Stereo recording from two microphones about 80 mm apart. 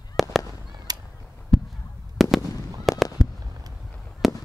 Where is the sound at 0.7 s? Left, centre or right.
Right.